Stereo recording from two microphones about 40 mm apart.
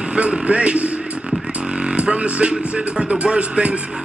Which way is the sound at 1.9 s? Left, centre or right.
Right.